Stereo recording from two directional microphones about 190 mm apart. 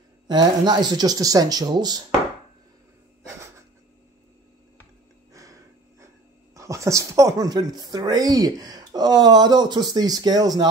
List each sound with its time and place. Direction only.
0.3 s speech: 20° right (ahead or behind)
5.3 s a sound: 15° right (ahead or behind)
6.5 s speech: 15° right (ahead or behind)